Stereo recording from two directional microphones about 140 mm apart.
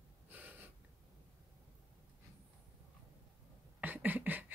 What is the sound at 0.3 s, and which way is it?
Snort, 10° right (ahead or behind).